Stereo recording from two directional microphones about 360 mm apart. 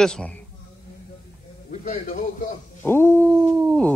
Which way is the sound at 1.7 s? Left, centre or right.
Left.